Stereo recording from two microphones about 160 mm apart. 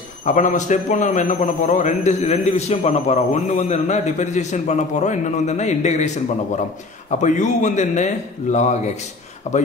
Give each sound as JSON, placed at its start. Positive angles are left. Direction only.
{"t": 0.2, "sound": "a man's voice", "side_deg": 50}